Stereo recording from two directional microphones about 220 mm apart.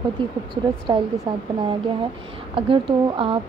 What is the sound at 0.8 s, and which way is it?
Speech, 20° right (ahead or behind).